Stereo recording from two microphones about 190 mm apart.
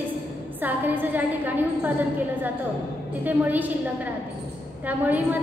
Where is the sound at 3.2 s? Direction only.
10° right (ahead or behind).